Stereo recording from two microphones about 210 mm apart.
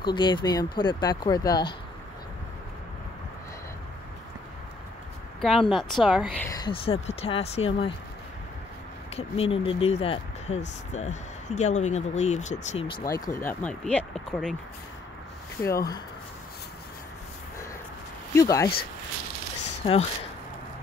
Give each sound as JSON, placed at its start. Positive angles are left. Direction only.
{"t": 0.0, "sound": "speech", "side_deg": 20}
{"t": 5.4, "sound": "a woman's voice", "side_deg": 0}
{"t": 6.4, "sound": "speech", "side_deg": 20}
{"t": 9.1, "sound": "speech", "side_deg": 25}
{"t": 18.3, "sound": "speech", "side_deg": 15}
{"t": 19.8, "sound": "speech", "side_deg": 25}